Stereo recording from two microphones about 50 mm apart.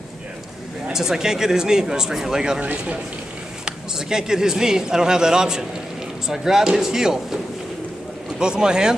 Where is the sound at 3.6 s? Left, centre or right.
Centre.